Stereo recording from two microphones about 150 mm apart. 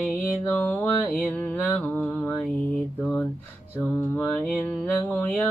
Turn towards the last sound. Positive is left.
turn(degrees=10)  # may be behind; listen again after turning